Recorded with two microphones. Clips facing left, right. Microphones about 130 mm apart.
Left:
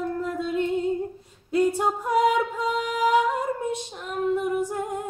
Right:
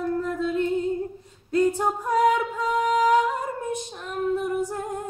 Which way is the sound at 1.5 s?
15° left (ahead or behind).